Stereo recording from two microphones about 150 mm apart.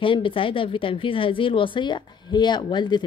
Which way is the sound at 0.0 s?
35° left (ahead or behind).